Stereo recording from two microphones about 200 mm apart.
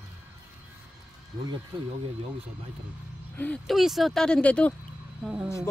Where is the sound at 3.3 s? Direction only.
5° left (ahead or behind).